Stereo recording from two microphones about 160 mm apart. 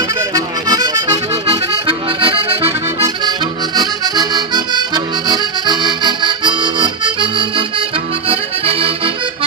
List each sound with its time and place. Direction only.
0.7 s music: 25° right (ahead or behind)
1.9 s accordion: 35° right (ahead or behind)